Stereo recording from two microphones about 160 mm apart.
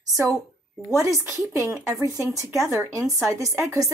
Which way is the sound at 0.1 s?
20° right (ahead or behind).